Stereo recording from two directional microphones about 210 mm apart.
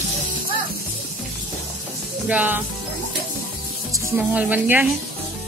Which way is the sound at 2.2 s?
10° right (ahead or behind).